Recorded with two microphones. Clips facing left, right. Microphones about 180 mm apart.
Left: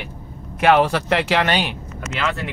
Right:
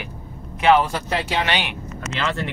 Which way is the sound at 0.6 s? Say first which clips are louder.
Left 1 dB; 70° left (ahead or behind).